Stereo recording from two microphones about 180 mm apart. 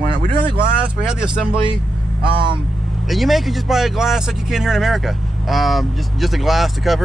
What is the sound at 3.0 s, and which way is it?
Speech, centre (ahead or behind).